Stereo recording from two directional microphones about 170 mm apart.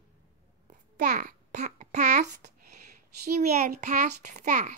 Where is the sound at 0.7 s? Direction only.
50° right (ahead or behind).